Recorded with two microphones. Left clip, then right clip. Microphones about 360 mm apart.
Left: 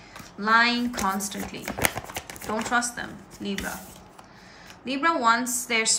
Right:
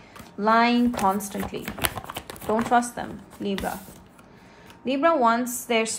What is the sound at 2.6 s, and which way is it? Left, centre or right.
Speech, centre.